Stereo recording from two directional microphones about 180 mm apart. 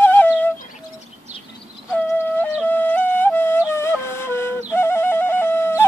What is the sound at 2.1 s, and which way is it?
Music, 10° left (ahead or behind).